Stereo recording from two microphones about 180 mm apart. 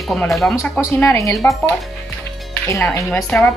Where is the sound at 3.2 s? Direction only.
5° left (ahead or behind).